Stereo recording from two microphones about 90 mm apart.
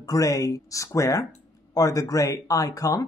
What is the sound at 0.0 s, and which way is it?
Speech, 40° left (ahead or behind).